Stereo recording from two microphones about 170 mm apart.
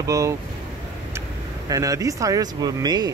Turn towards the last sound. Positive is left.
turn(degrees=-25)  # may be behind; listen again after turning